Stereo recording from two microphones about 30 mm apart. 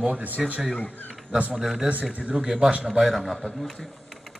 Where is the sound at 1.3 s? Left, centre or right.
Right.